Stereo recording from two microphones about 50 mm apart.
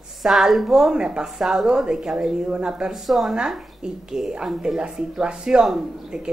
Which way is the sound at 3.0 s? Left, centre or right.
Centre.